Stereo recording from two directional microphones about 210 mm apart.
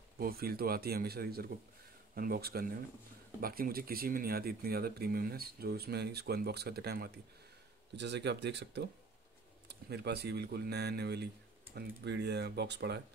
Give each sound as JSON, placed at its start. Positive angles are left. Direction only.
{"t": 0.2, "sound": "speech", "side_deg": -45}